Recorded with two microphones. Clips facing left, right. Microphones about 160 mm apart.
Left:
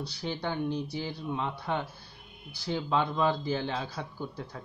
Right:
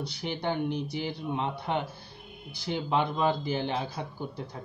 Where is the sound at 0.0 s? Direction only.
20° right (ahead or behind).